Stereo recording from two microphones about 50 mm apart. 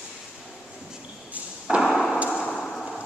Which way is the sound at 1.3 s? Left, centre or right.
Centre.